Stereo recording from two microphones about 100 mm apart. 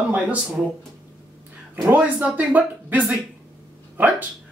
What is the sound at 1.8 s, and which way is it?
Speech, 20° right (ahead or behind).